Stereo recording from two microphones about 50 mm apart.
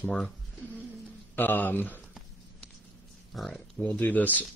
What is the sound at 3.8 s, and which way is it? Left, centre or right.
Speech, left.